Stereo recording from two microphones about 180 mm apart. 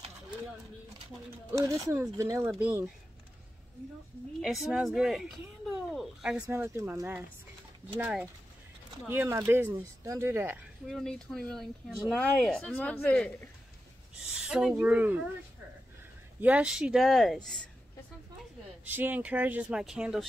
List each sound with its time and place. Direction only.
1.5 s speech: 15° right (ahead or behind)
4.4 s speech: centre (ahead or behind)
10.9 s speech: 5° left (ahead or behind)
16.3 s speech: 10° right (ahead or behind)
18.9 s speech: 10° right (ahead or behind)